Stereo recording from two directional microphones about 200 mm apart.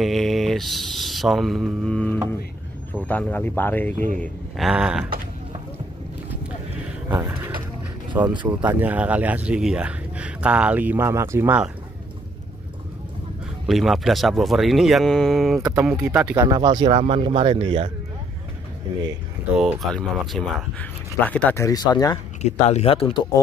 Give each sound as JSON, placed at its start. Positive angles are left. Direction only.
{"t": 0.0, "sound": "speech", "side_deg": 0}
{"t": 4.2, "sound": "speech", "side_deg": 0}
{"t": 7.1, "sound": "a sound", "side_deg": -15}
{"t": 8.3, "sound": "speech", "side_deg": -25}
{"t": 8.6, "sound": "speech", "side_deg": -10}
{"t": 13.7, "sound": "speech", "side_deg": 0}
{"t": 16.3, "sound": "speech", "side_deg": -20}
{"t": 19.5, "sound": "speech", "side_deg": 0}
{"t": 22.4, "sound": "speech", "side_deg": 35}